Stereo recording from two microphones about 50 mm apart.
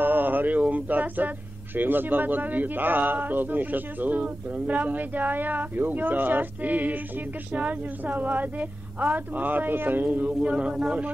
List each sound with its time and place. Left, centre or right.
0.0 s a sound: right
1.8 s speech: right
10.4 s speech: right